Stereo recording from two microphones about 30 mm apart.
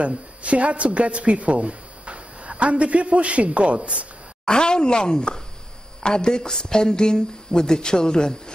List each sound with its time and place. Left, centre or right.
0.4 s speech: right
4.5 s speech: left